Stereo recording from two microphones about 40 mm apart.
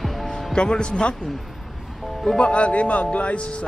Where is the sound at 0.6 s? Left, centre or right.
Left.